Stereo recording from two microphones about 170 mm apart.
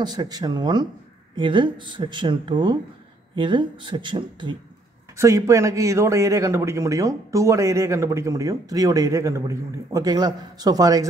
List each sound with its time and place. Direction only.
0.0 s a man's voice: 25° right (ahead or behind)
5.1 s a man's voice: 15° right (ahead or behind)